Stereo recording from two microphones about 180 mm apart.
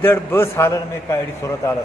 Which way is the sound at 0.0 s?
10° left (ahead or behind).